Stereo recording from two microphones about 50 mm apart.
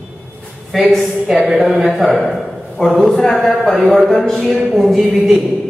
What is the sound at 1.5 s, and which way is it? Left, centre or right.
Speech, centre.